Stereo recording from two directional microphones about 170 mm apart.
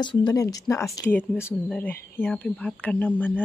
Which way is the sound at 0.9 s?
5° left (ahead or behind).